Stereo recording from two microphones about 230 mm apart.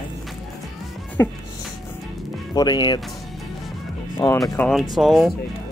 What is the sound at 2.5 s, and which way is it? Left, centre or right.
Speech, centre.